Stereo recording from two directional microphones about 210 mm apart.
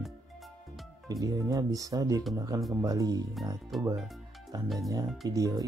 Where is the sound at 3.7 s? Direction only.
Centre (ahead or behind).